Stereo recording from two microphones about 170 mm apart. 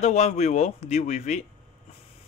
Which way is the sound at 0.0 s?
40° left (ahead or behind).